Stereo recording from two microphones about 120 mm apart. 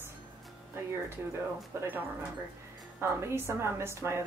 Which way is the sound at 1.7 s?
20° right (ahead or behind).